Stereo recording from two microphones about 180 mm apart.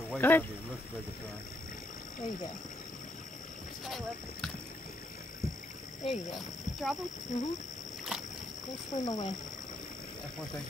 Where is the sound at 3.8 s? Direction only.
Centre (ahead or behind).